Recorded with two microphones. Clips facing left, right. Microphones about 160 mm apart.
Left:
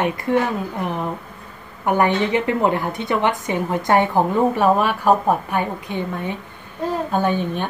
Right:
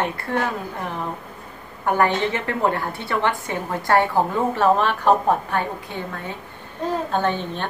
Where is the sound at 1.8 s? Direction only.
15° left (ahead or behind).